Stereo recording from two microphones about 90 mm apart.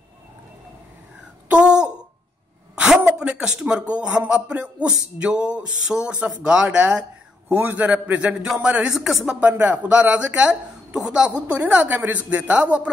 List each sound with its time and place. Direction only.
1.5 s a sound: 10° right (ahead or behind)
2.8 s speech: 10° right (ahead or behind)
7.4 s speech: 20° right (ahead or behind)
9.5 s speech: 20° right (ahead or behind)